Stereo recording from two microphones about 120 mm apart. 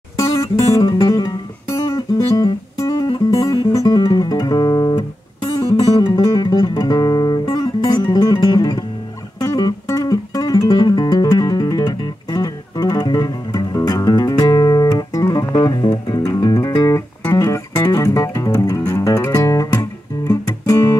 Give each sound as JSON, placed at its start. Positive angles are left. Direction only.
{"t": 0.2, "sound": "music", "side_deg": 30}